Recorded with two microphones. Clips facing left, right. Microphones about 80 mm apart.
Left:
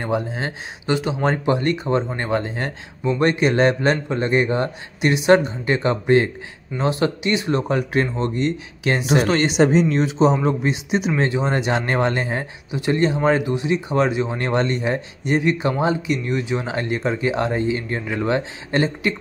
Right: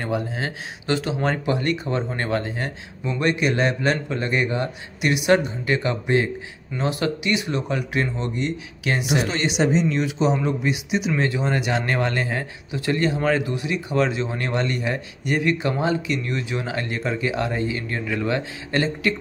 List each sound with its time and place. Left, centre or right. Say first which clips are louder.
0.0 s speech: left 2 dB; left
3.1 s speech: left 4 dB; left
6.8 s speech: left 3 dB; left
9.9 s speech: left 4 dB; left
14.4 s speech: left 4 dB; left
14.8 s speech: left 3 dB; left